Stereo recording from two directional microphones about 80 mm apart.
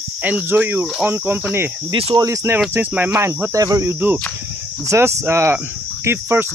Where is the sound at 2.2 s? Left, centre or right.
Right.